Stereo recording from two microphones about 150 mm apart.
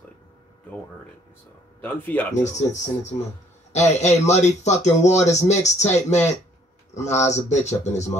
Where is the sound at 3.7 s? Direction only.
50° left (ahead or behind).